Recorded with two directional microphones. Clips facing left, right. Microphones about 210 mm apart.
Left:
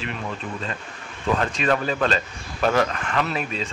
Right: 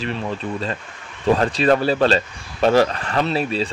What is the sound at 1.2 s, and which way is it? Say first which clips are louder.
Speech: right 6 dB; 35° right (ahead or behind).